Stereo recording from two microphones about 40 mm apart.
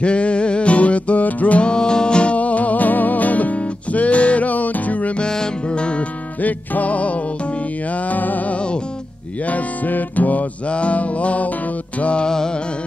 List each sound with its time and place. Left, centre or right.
0.0 s music: left
1.6 s music: left
2.3 s music: left
5.2 s music: centre
6.4 s music: left
10.7 s music: left